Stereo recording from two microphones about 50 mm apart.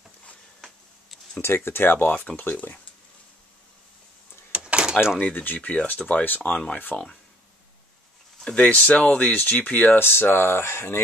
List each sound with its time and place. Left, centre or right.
1.4 s speech: left
4.5 s door: right
5.2 s speech: left
5.9 s speech: left
6.2 s speech: left
8.5 s speech: left
9.3 s speech: left
9.9 s speech: left